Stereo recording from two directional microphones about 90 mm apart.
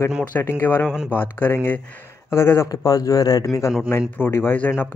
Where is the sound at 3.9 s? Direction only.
25° left (ahead or behind).